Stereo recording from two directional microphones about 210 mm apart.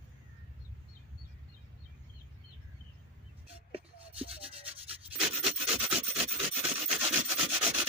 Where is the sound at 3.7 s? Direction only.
25° right (ahead or behind).